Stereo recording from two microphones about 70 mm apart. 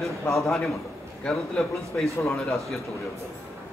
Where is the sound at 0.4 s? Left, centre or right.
Centre.